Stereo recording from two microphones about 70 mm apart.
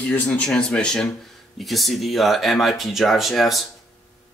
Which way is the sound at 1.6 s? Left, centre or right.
Centre.